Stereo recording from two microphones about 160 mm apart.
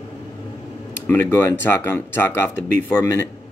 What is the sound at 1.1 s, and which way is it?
Speech, 15° left (ahead or behind).